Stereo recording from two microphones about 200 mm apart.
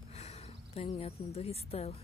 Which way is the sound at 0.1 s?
30° left (ahead or behind).